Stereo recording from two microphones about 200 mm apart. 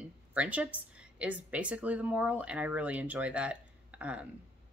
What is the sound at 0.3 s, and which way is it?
Speech, 5° right (ahead or behind).